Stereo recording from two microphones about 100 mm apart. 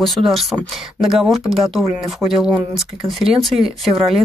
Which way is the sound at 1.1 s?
5° right (ahead or behind).